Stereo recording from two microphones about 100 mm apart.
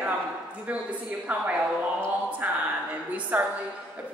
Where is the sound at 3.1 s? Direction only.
15° right (ahead or behind).